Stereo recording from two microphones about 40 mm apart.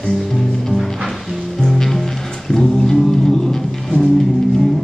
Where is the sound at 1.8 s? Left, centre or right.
Centre.